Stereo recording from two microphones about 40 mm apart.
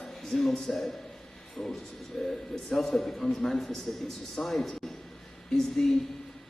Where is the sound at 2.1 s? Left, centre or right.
Centre.